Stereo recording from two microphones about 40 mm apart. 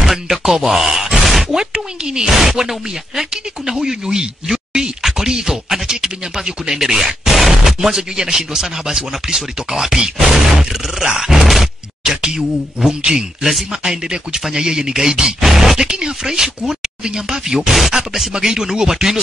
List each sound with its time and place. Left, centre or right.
0.0 s speech: centre
0.6 s grunt: centre
1.1 s a sound: centre
1.5 s speech: centre
2.2 s speech: centre
11.4 s grunt: centre
12.0 s speech: right
13.7 s speech: centre
15.5 s grunt: centre
15.8 s speech: centre